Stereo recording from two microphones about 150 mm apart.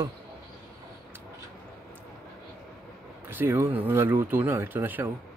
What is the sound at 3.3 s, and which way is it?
Speech, 15° right (ahead or behind).